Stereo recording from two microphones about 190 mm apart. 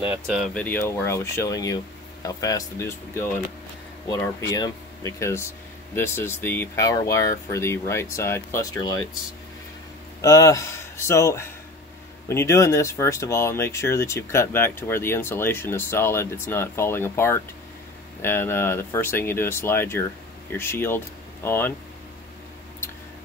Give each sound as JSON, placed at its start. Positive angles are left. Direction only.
{"t": 0.0, "sound": "speech", "side_deg": -5}
{"t": 0.6, "sound": "speech", "side_deg": 10}
{"t": 10.2, "sound": "speech", "side_deg": 15}